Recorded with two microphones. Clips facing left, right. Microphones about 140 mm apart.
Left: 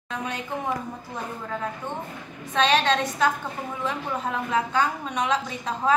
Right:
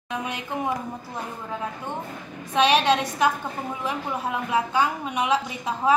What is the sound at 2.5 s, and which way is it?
A woman's voice, 10° right (ahead or behind).